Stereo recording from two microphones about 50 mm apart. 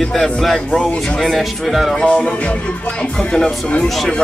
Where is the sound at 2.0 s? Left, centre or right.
Left.